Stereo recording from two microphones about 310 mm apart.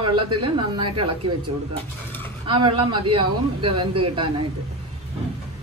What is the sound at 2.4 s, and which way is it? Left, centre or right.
Speech, centre.